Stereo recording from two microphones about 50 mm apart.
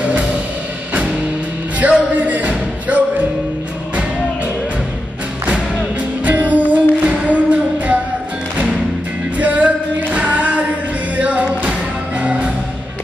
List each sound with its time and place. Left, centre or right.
0.0 s music: right
1.8 s music: right
6.2 s music: right
9.4 s music: right